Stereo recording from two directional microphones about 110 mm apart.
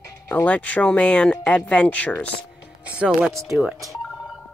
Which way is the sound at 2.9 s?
10° right (ahead or behind).